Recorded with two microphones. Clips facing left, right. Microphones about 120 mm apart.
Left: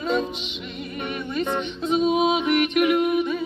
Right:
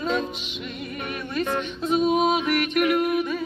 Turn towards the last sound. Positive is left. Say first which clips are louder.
# left 2 dB
turn(degrees=15)  # may be behind; listen again after turning